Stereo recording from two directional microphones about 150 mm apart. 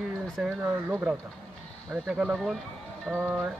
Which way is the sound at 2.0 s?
Centre (ahead or behind).